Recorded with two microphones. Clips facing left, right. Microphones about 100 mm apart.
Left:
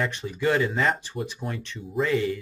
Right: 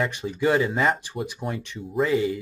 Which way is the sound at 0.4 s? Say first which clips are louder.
Right 2 dB; 5° right (ahead or behind).